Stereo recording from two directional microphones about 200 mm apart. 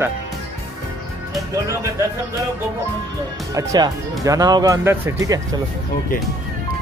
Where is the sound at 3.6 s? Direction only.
20° right (ahead or behind).